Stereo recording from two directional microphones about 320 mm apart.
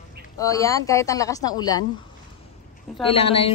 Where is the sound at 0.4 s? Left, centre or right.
Centre.